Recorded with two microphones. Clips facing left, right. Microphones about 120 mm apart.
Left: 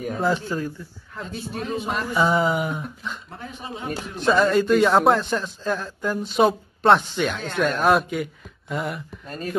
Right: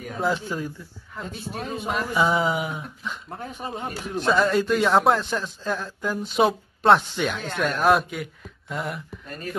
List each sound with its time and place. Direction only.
0.2 s a man's voice: 5° right (ahead or behind)
3.3 s speech: 45° right (ahead or behind)
4.3 s a man's voice: centre (ahead or behind)